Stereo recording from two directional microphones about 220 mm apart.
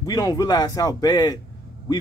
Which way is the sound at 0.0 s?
15° left (ahead or behind).